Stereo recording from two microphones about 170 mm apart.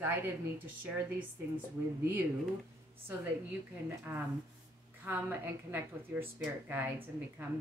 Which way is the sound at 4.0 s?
10° right (ahead or behind).